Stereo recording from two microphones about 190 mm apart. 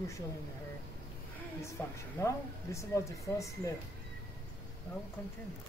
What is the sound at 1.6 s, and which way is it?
Speech, 15° left (ahead or behind).